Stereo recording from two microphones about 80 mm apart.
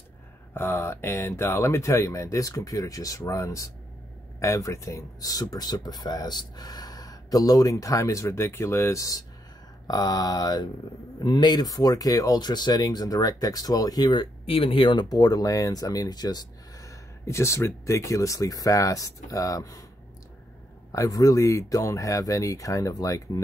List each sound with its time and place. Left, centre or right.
0.6 s speech: left
9.8 s speech: left
11.2 s speech: left
14.7 s speech: left
17.3 s speech: left
20.9 s speech: left